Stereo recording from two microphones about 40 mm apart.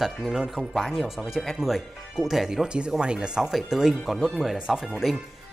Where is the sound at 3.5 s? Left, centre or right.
Centre.